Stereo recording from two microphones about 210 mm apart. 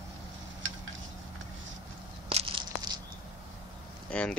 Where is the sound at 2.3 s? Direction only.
25° right (ahead or behind).